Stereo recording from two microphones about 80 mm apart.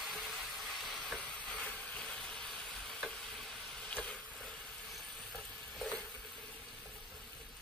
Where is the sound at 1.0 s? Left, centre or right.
Centre.